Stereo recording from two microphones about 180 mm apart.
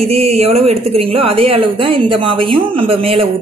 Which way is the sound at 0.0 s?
35° right (ahead or behind).